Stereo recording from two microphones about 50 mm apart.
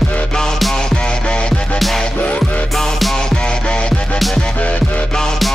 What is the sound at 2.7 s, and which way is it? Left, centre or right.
Music, centre.